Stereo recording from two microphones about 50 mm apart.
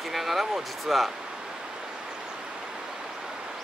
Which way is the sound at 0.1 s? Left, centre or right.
Centre.